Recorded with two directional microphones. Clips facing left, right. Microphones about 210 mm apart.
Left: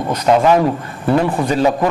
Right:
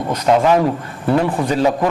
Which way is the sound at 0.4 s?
30° left (ahead or behind).